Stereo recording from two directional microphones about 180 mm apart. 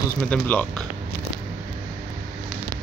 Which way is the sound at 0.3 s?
5° left (ahead or behind).